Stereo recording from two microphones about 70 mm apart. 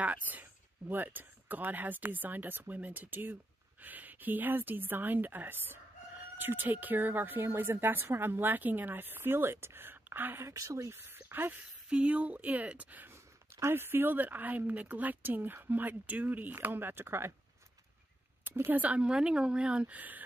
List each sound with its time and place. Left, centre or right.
0.0 s a woman's voice: right
10.5 s speech: right
11.9 s a woman's voice: centre
13.1 s a woman's voice: right
18.4 s speech: right
18.8 s a woman's voice: centre